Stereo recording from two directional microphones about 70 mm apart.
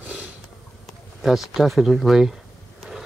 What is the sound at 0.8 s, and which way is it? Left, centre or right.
Speech, centre.